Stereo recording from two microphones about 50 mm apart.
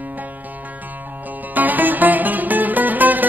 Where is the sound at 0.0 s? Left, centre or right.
Right.